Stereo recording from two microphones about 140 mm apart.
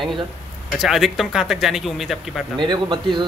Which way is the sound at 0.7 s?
Centre (ahead or behind).